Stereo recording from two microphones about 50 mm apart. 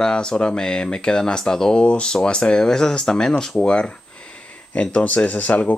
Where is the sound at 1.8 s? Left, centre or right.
Left.